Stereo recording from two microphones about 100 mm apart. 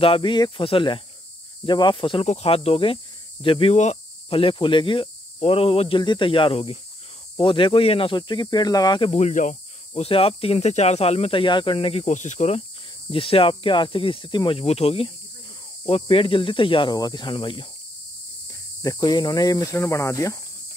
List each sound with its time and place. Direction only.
0.0 s cricket: 60° left (ahead or behind)
8.2 s speech: 45° left (ahead or behind)
9.0 s speech: 90° left
9.9 s speech: 70° left (ahead or behind); by 12.6 s 90° left
13.1 s cricket: 65° left (ahead or behind); by 15.1 s 80° left
15.8 s cricket: 70° left (ahead or behind)
16.9 s speech: 45° left (ahead or behind)
18.5 s speech: 35° left (ahead or behind)